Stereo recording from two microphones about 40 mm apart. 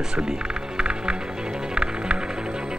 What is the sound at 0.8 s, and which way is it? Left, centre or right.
Music, right.